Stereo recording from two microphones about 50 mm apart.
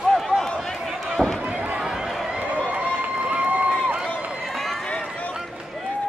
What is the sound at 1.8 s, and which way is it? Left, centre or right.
Run, centre.